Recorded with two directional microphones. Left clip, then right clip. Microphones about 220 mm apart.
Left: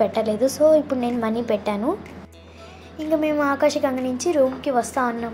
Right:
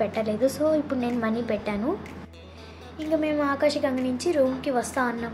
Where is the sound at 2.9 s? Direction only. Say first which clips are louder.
Left 4 dB; 10° left (ahead or behind).